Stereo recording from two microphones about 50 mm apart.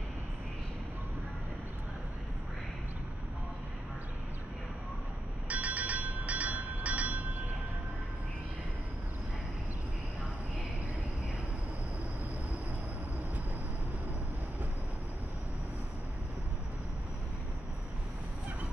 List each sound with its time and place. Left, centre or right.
5.5 s train: right